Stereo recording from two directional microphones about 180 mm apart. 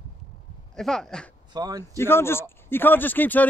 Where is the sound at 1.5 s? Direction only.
20° right (ahead or behind).